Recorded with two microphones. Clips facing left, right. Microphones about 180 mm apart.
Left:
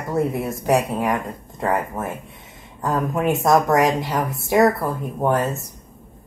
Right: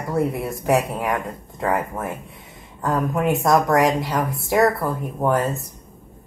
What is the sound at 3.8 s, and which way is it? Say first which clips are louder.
A woman's voice: even; centre (ahead or behind).